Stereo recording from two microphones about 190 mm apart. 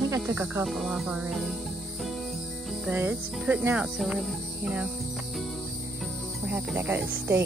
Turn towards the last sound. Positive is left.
turn(degrees=-10)  # may be behind; listen again after turning